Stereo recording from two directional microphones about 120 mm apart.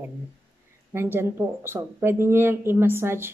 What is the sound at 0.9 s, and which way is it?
Speech, 20° right (ahead or behind).